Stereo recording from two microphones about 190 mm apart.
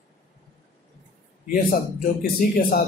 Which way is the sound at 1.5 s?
45° left (ahead or behind).